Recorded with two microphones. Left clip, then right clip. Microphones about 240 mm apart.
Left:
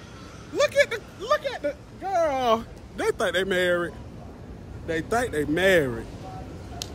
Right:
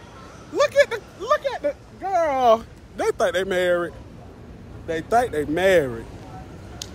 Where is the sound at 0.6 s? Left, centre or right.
Right.